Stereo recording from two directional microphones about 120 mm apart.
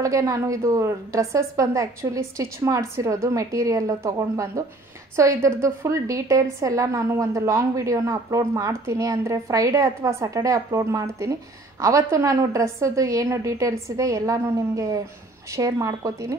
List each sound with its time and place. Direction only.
0.0 s a woman's voice: 25° right (ahead or behind)